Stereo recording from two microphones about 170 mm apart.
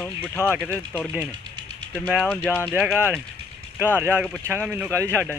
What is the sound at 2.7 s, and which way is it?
Speech, 5° right (ahead or behind).